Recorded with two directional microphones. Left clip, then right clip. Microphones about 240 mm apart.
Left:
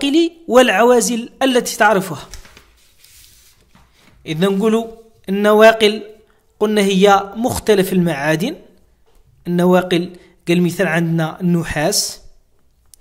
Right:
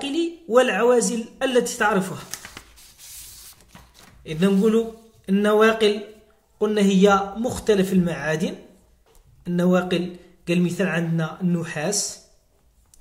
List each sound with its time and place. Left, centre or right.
0.0 s speech: left
4.2 s a man's voice: left